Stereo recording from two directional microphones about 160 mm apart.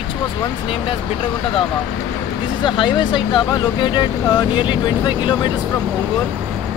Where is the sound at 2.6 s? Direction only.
30° left (ahead or behind).